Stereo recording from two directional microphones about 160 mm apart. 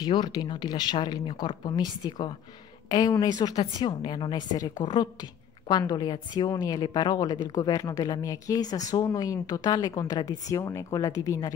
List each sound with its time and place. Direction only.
0.0 s a woman's voice: 30° left (ahead or behind)